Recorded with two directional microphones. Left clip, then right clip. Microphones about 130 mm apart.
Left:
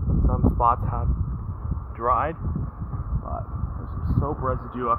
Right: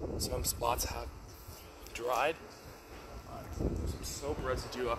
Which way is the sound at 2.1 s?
15° left (ahead or behind).